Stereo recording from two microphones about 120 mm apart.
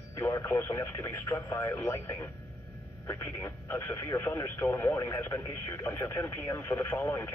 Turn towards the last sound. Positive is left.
turn(degrees=20)  # may be behind; listen again after turning